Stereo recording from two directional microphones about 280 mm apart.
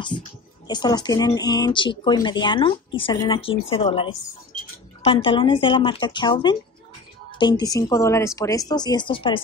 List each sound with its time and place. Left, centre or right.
0.7 s a woman's voice: centre